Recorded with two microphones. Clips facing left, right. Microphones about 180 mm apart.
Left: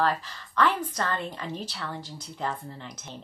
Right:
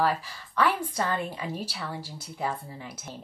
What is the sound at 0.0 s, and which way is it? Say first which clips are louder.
A woman's voice: even; 10° right (ahead or behind).